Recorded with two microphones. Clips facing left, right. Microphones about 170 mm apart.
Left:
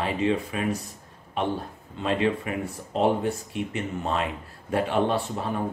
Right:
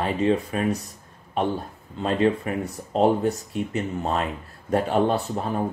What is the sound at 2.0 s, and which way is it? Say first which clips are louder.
Speech: right 3 dB; 40° right (ahead or behind).